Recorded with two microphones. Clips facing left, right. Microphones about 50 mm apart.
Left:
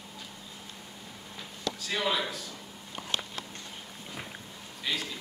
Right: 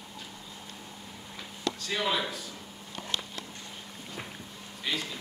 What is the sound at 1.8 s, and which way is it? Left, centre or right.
Speech, centre.